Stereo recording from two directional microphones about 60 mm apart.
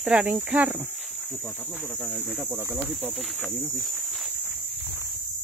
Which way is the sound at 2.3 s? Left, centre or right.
Centre.